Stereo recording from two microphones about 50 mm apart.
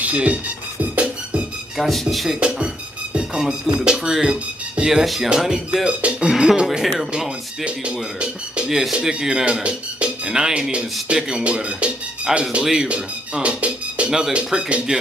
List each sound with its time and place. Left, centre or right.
0.0 s speech: right
0.9 s music: centre
1.8 s speech: centre
2.4 s speech: right
4.2 s music: centre
4.8 s speech: centre
6.8 s speech: centre
7.1 s speech: right
8.6 s speech: centre
12.3 s speech: centre
12.8 s music: right
14.3 s speech: centre